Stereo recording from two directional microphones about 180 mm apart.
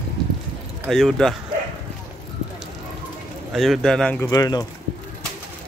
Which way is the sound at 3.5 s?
Centre (ahead or behind).